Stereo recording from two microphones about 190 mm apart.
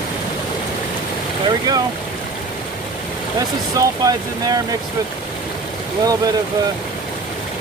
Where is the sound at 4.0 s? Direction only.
20° right (ahead or behind).